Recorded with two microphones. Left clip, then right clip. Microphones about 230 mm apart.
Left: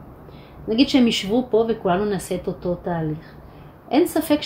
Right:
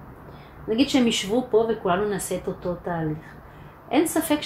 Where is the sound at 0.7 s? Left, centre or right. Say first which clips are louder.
Left 3 dB; left.